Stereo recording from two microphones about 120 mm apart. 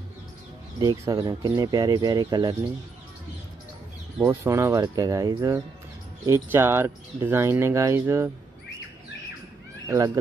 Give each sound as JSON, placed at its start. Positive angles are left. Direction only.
{"t": 0.7, "sound": "speech", "side_deg": -30}
{"t": 4.2, "sound": "speech", "side_deg": -20}
{"t": 6.2, "sound": "speech", "side_deg": -20}
{"t": 9.8, "sound": "speech", "side_deg": -25}